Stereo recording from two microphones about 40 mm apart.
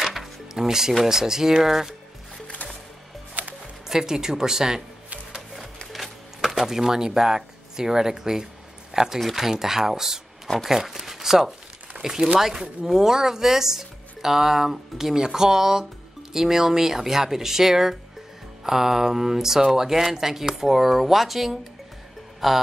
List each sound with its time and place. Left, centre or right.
0.0 s music: centre
1.0 s speech: centre
2.4 s music: left
3.4 s music: right
3.9 s speech: centre
5.9 s speech: centre